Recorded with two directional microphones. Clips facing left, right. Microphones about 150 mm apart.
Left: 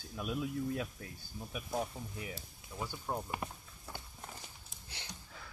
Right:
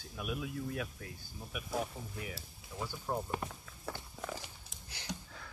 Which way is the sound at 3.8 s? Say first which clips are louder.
Right 7 dB; 90° right.